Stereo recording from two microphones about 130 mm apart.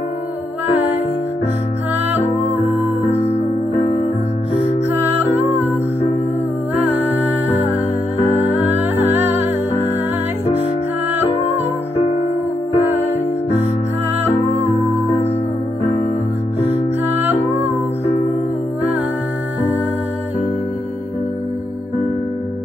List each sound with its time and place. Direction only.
4.9 s music: 15° right (ahead or behind)
6.7 s music: 15° right (ahead or behind)
8.4 s music: 15° right (ahead or behind)
12.7 s music: 55° left (ahead or behind)
17.0 s music: 15° right (ahead or behind)